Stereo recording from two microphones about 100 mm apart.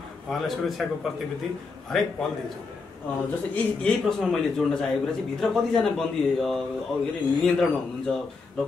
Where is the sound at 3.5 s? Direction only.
5° left (ahead or behind).